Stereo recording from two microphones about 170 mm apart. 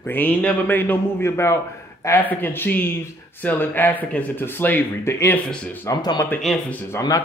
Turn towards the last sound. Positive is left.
turn(degrees=20)  # may be behind; listen again after turning